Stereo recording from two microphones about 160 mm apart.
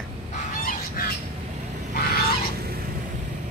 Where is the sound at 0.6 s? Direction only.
60° left (ahead or behind).